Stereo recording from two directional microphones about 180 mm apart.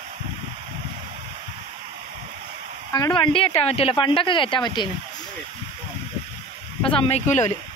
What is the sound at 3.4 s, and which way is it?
Speech, 35° left (ahead or behind).